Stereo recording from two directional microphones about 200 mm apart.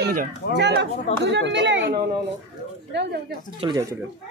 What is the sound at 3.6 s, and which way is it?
Speech, 25° right (ahead or behind).